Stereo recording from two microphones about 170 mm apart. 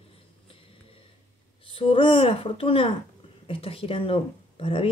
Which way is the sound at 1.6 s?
30° left (ahead or behind).